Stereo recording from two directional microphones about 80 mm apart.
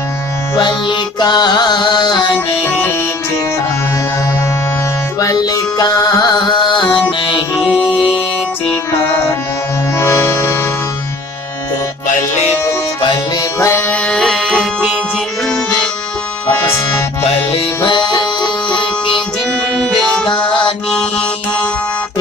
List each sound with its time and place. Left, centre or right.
0.6 s music: left
5.2 s music: left
9.9 s music: left
13.6 s music: left
13.9 s music: centre
17.8 s music: left
19.8 s music: centre
20.2 s music: left